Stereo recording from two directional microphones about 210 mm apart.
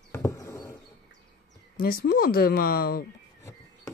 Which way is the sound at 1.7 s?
45° left (ahead or behind).